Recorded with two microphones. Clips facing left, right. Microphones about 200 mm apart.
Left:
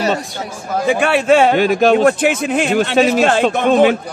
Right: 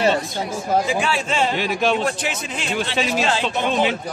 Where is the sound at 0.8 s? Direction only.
65° left (ahead or behind).